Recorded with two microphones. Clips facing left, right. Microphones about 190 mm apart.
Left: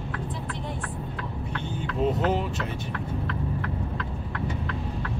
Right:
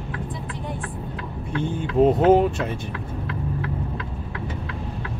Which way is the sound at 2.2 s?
50° right (ahead or behind).